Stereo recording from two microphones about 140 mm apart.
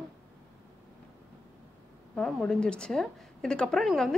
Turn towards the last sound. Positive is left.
turn(degrees=0)  # may be behind; listen again after turning